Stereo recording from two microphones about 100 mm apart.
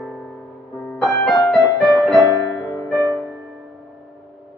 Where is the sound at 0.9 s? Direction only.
Centre (ahead or behind).